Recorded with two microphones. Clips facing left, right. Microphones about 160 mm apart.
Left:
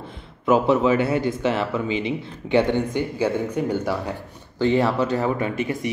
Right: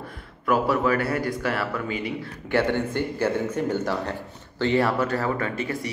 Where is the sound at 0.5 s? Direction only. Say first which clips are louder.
Left 4 dB; 20° left (ahead or behind).